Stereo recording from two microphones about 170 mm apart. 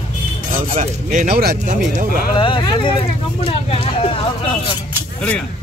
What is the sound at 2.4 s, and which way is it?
Speech, 30° left (ahead or behind).